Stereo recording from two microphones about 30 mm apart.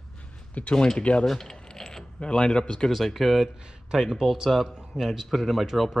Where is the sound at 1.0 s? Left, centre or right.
Left.